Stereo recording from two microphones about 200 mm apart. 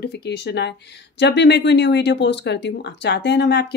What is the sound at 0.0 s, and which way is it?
Speech, 55° left (ahead or behind).